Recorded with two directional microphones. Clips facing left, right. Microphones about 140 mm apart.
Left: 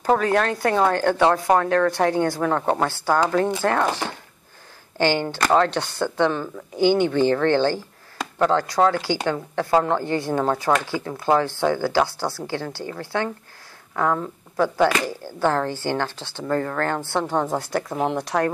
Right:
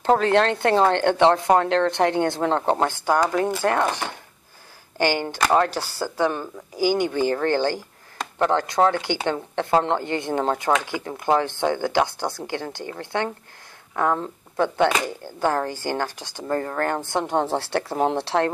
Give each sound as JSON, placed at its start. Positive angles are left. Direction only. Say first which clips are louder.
{"t": 0.0, "sound": "speech", "louder": "right 1 dB", "side_deg": -25}
{"t": 4.9, "sound": "speech", "louder": "left 2 dB", "side_deg": -15}
{"t": 16.4, "sound": "speech", "louder": "left 1 dB", "side_deg": -25}